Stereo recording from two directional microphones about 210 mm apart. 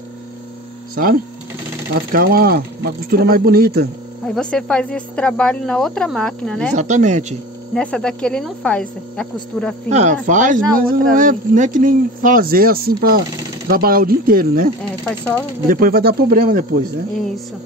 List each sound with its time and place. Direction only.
0.9 s speech: 45° right (ahead or behind)
4.3 s speech: 5° left (ahead or behind)
6.7 s speech: 35° right (ahead or behind)
7.7 s speech: 5° left (ahead or behind)
9.8 s speech: 35° right (ahead or behind)
14.8 s speech: 5° left (ahead or behind)
15.7 s speech: 45° right (ahead or behind)